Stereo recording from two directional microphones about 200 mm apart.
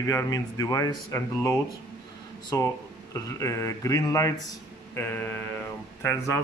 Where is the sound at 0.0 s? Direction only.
15° left (ahead or behind).